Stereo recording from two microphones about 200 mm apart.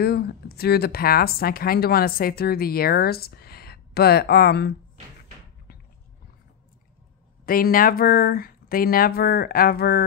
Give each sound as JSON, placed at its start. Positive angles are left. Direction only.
{"t": 0.0, "sound": "speech", "side_deg": 50}
{"t": 7.4, "sound": "speech", "side_deg": 45}